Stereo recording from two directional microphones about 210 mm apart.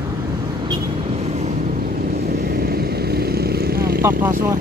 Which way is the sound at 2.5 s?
45° right (ahead or behind).